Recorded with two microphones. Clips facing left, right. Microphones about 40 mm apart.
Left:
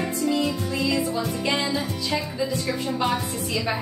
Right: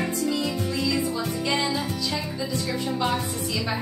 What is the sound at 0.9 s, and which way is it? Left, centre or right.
Speech, centre.